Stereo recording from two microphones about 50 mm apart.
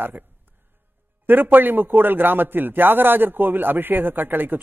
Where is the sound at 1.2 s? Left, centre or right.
Right.